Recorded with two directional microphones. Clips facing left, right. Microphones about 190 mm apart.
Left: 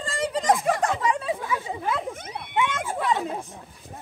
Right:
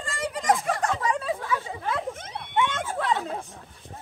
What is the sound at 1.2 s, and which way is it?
Chatter, 15° left (ahead or behind).